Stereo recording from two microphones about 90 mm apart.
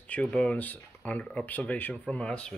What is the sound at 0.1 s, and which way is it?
Speech, 10° left (ahead or behind).